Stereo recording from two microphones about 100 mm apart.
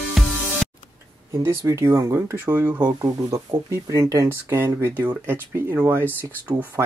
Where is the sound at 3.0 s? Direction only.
30° right (ahead or behind).